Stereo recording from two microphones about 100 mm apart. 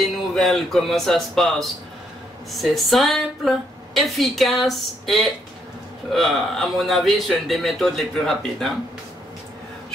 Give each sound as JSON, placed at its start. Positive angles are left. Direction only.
{"t": 0.0, "sound": "speech", "side_deg": 0}